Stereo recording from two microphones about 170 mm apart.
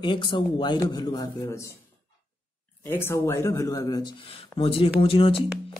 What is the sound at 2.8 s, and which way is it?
Speech, 15° left (ahead or behind).